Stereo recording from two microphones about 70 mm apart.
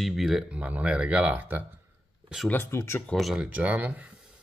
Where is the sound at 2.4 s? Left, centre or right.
Left.